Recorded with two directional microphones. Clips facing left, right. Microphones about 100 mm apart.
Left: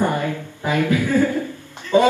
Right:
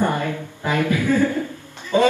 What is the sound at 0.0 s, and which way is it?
A woman's voice, 20° left (ahead or behind).